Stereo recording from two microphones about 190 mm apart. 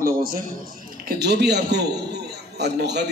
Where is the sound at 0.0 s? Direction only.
50° right (ahead or behind).